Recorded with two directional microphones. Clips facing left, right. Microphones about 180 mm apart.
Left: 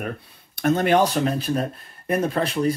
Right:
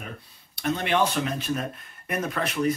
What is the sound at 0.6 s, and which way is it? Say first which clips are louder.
Speech: left 6 dB; 45° left (ahead or behind).